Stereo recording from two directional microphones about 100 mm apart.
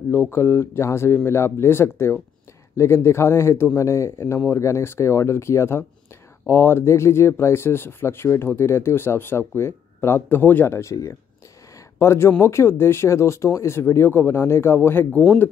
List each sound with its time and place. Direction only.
0.1 s speech: 25° left (ahead or behind)